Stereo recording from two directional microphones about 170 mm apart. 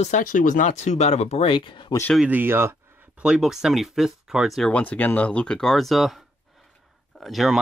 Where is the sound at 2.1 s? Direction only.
10° right (ahead or behind).